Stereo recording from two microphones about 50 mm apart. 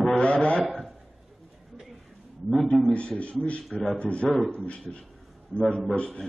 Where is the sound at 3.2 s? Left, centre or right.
Left.